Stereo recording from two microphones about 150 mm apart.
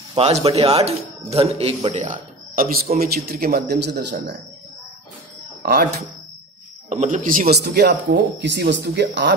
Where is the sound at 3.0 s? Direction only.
90° right.